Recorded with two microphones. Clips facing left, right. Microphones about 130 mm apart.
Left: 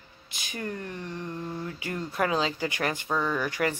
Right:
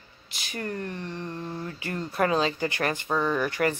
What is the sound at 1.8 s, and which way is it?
Speech, 10° left (ahead or behind).